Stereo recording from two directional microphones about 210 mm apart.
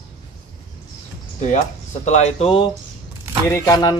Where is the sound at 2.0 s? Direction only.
35° left (ahead or behind).